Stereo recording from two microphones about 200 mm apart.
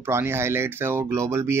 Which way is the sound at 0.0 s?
10° right (ahead or behind).